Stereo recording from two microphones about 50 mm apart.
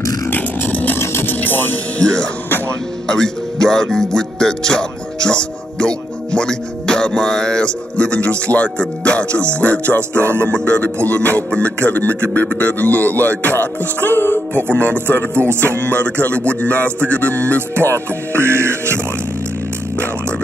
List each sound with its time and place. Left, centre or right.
0.3 s a sound: left
0.9 s music: left
1.4 s music: left
3.1 s speech: centre; by 10.0 s left
10.1 s music: right
10.5 s speech: left
13.4 s music: left
14.7 s speech: left
15.0 s music: right
16.0 s speech: left
17.9 s speech: right